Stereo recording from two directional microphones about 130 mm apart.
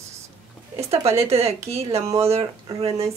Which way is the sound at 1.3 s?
50° right (ahead or behind).